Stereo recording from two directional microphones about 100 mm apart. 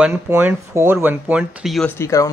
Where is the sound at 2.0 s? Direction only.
30° left (ahead or behind).